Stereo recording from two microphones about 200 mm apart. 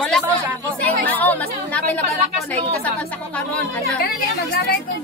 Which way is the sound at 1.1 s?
10° left (ahead or behind).